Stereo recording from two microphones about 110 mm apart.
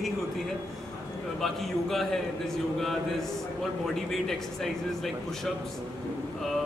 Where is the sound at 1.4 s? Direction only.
Centre (ahead or behind).